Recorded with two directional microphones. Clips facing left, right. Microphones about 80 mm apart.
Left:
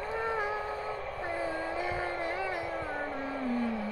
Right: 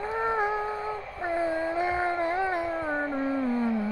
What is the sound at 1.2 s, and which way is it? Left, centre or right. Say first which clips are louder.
Vehicle: right 8 dB; right.